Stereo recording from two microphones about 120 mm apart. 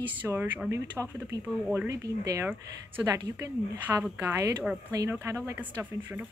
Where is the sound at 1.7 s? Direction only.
25° right (ahead or behind).